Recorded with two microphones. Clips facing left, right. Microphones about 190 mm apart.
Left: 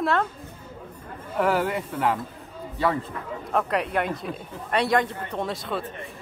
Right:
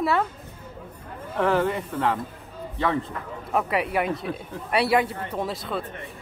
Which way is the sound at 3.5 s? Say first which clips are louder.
Even; 5° right (ahead or behind).